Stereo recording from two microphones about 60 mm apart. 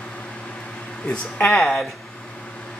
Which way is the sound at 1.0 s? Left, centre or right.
Left.